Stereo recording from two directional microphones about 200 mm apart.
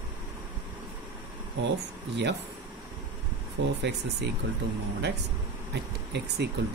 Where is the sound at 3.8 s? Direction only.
60° right (ahead or behind).